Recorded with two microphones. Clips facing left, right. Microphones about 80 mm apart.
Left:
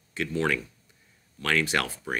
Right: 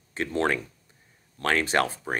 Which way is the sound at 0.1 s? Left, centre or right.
Right.